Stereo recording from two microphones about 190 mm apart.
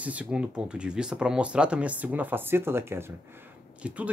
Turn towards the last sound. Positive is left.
turn(degrees=-5)  # may be behind; listen again after turning